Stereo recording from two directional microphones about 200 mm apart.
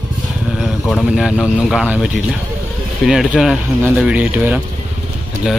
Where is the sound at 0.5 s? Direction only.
Centre (ahead or behind).